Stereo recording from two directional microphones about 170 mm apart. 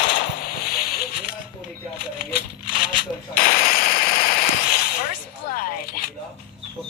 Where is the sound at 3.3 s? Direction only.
55° left (ahead or behind).